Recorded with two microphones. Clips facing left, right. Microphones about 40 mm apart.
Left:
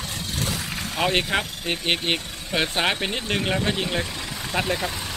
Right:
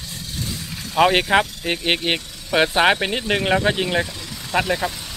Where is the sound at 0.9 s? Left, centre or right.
Right; by 4.9 s centre.